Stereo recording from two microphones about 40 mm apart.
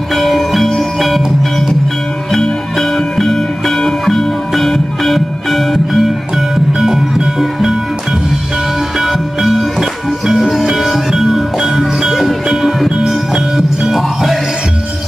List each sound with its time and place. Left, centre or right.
0.1 s music: centre
2.3 s music: centre
9.0 s music: centre